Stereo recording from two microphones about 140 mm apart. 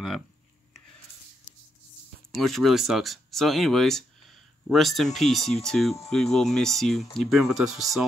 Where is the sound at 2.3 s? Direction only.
Centre (ahead or behind).